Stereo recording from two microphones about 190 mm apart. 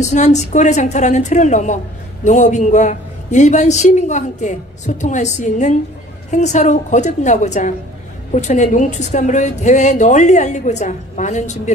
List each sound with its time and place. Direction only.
0.0 s a woman's voice: 40° left (ahead or behind)